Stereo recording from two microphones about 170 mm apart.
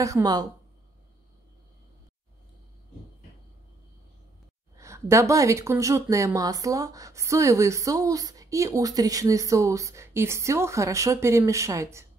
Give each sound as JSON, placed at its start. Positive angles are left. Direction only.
{"t": 0.0, "sound": "a woman's voice", "side_deg": -20}
{"t": 4.7, "sound": "speech", "side_deg": -15}